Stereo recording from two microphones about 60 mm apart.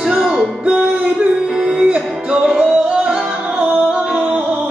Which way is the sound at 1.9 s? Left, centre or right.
Centre.